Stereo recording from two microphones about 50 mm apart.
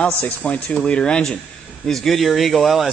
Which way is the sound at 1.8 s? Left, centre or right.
Centre.